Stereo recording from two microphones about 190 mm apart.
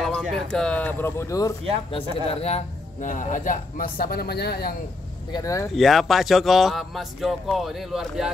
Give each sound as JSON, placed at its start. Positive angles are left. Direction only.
{"t": 0.0, "sound": "speech", "side_deg": 0}
{"t": 1.9, "sound": "a man's voice", "side_deg": 30}
{"t": 5.3, "sound": "speech", "side_deg": 15}
{"t": 5.8, "sound": "a man's voice", "side_deg": 0}